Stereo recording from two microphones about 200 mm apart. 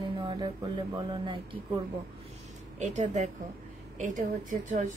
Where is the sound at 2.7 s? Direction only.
35° right (ahead or behind).